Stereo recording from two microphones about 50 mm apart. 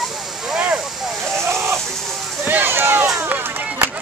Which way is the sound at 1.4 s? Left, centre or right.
Right.